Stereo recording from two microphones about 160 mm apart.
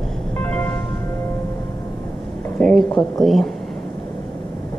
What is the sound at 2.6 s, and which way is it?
Speech, centre (ahead or behind).